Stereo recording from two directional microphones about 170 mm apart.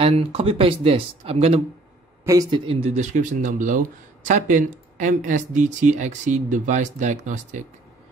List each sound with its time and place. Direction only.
0.0 s speech: 35° right (ahead or behind)
2.2 s speech: 25° right (ahead or behind); by 7.6 s 45° right (ahead or behind)